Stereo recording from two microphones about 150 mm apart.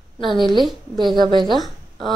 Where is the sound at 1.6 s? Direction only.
Centre (ahead or behind).